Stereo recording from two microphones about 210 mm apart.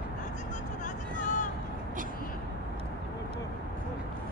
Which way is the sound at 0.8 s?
35° left (ahead or behind).